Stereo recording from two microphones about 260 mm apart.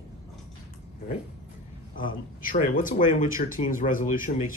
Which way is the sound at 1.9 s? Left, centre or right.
Left.